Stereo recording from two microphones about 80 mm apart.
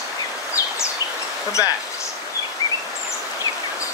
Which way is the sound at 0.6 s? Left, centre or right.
Left.